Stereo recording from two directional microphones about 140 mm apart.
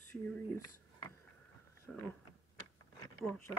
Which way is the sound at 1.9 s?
5° left (ahead or behind).